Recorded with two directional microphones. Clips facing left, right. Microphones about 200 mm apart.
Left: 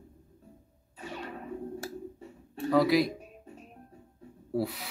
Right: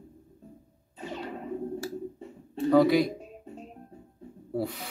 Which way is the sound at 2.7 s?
Centre (ahead or behind).